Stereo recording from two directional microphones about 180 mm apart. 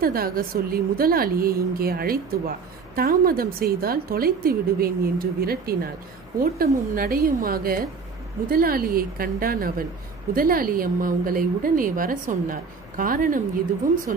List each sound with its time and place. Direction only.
0.0 s a woman's voice: 55° right (ahead or behind)